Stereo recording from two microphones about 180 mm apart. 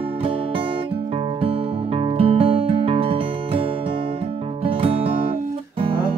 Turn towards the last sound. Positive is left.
turn(degrees=-30)  # may be behind; listen again after turning